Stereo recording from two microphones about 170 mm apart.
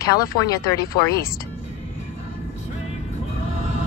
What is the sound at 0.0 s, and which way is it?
Speech, 20° left (ahead or behind).